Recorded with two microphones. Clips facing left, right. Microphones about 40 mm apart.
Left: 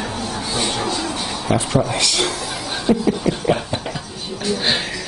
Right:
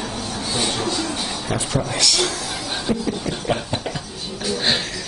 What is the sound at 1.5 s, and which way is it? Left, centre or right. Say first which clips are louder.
Speech: left 6 dB; centre.